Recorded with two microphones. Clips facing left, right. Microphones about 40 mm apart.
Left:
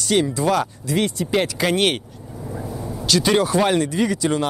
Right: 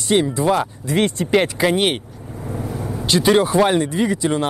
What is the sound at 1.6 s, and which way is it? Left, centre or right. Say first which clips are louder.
Speech: right 2 dB; centre.